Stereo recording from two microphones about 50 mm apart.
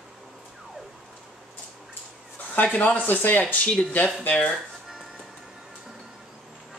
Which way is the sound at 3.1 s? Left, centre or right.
Left.